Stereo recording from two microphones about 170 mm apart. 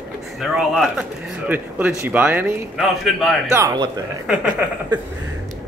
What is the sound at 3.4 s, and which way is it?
Speech, 20° right (ahead or behind).